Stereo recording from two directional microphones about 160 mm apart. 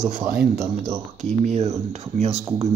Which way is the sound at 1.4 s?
45° right (ahead or behind).